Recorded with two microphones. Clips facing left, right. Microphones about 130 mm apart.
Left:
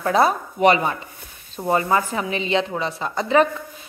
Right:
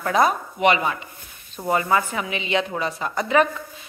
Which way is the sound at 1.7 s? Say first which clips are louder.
Left 1 dB; 30° left (ahead or behind).